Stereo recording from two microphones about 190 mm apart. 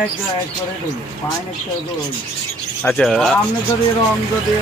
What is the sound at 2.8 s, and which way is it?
Speech, 5° left (ahead or behind).